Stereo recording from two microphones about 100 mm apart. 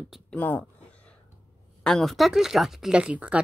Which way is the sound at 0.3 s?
15° left (ahead or behind).